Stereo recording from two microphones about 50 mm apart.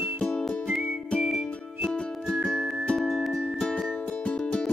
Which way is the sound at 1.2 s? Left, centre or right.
Centre.